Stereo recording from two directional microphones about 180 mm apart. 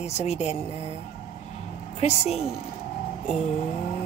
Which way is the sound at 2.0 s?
35° left (ahead or behind).